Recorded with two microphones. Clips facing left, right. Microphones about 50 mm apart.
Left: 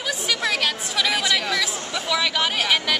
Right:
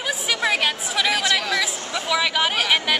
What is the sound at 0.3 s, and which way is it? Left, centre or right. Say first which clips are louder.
Chatter: right 2 dB; centre.